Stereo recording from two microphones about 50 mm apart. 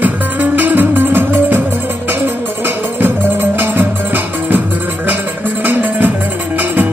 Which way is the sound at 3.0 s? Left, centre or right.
Right.